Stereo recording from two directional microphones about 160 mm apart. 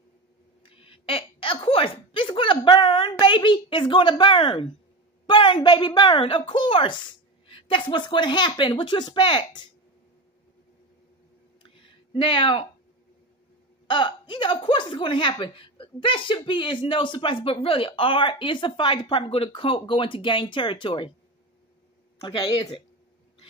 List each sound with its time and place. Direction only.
0.7 s a woman's voice: 35° left (ahead or behind)
11.6 s a sound: 30° left (ahead or behind)
13.8 s speech: 30° left (ahead or behind)
22.2 s speech: 35° left (ahead or behind)